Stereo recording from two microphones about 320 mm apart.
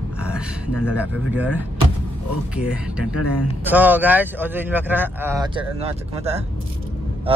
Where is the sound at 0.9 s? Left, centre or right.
Centre.